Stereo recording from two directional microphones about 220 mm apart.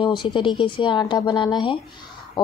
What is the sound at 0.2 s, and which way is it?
Speech, 20° left (ahead or behind).